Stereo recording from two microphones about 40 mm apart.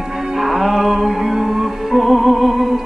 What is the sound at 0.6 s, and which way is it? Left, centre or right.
Music, centre.